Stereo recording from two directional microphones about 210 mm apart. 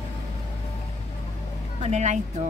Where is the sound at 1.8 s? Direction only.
35° right (ahead or behind).